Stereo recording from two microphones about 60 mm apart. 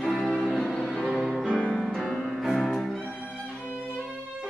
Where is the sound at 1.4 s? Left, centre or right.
Centre.